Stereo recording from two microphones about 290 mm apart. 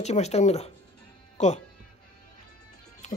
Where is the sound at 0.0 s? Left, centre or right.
Left.